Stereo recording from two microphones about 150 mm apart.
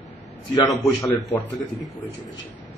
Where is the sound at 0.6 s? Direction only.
25° left (ahead or behind).